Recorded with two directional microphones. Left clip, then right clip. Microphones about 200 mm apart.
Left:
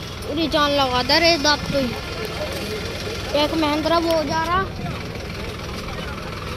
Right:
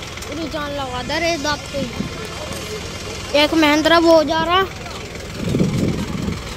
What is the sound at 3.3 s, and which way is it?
Speech, 20° right (ahead or behind).